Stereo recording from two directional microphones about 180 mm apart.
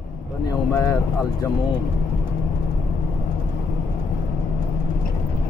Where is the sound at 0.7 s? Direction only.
15° left (ahead or behind).